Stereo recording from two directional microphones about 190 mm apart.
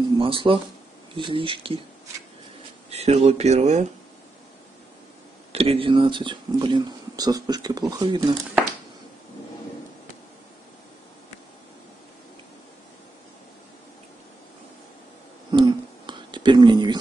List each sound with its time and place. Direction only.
0.2 s speech: 25° right (ahead or behind)
2.9 s speech: 35° right (ahead or behind)
5.5 s speech: 30° right (ahead or behind)
15.5 s a sound: 25° right (ahead or behind)